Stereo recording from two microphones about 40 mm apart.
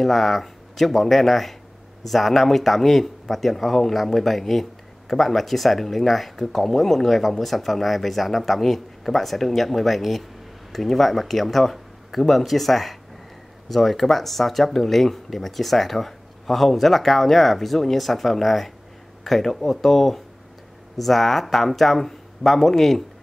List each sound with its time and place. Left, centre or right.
0.0 s speech: centre